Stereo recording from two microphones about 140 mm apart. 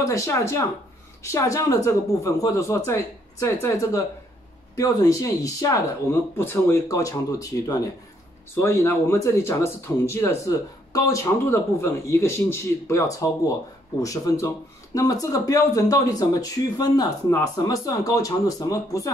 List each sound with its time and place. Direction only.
0.0 s speech: 20° left (ahead or behind)